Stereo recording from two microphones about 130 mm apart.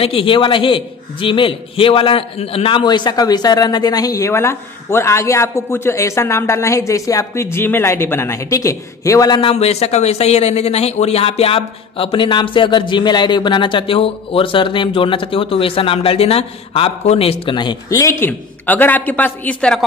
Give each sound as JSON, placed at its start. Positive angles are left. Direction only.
{"t": 0.0, "sound": "a man's voice", "side_deg": 45}
{"t": 9.4, "sound": "speech", "side_deg": 50}
{"t": 17.8, "sound": "speech", "side_deg": 25}